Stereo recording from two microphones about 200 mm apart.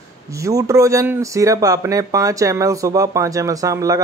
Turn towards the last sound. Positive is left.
turn(degrees=-15)  # may be behind; listen again after turning